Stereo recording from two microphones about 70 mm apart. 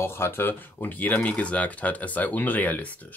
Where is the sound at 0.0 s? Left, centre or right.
Left.